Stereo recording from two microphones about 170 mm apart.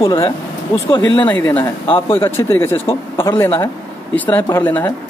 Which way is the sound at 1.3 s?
10° left (ahead or behind).